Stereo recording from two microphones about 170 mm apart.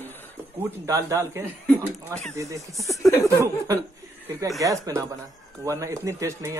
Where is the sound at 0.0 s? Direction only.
10° left (ahead or behind).